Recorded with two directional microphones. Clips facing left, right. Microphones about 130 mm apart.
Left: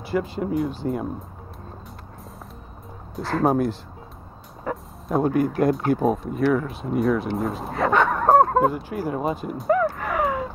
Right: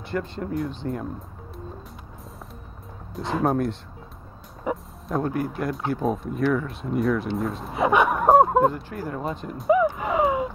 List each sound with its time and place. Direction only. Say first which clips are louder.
0.0 s speech: left 4 dB; 5° left (ahead or behind)
3.2 s speech: left 2 dB; centre (ahead or behind)
4.7 s speech: right 1 dB; 15° right (ahead or behind)
5.0 s speech: left 5 dB; 10° left (ahead or behind)
6.0 s speech: even; centre (ahead or behind)
7.7 s speech: right 1 dB; 15° right (ahead or behind)
8.3 s speech: even; centre (ahead or behind)
9.8 s a sound: right 2 dB; 20° right (ahead or behind)